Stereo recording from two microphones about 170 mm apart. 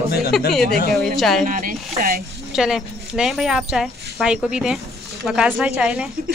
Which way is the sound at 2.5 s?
5° right (ahead or behind).